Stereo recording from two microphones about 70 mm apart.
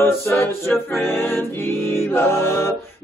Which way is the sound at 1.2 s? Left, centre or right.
Left.